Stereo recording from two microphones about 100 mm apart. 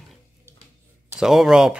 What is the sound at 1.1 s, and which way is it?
Speech, 5° right (ahead or behind).